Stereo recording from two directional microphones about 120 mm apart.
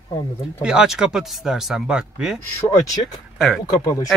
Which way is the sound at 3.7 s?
25° left (ahead or behind).